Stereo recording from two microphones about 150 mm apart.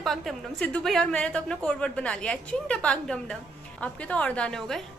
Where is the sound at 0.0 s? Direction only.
Centre (ahead or behind).